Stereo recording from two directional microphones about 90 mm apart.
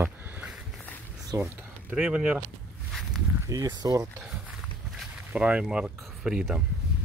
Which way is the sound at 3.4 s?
40° right (ahead or behind).